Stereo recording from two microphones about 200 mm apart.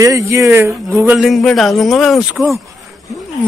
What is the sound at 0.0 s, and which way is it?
Speech, 15° right (ahead or behind).